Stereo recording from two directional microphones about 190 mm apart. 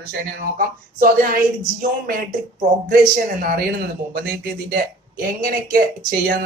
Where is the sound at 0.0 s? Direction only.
50° right (ahead or behind).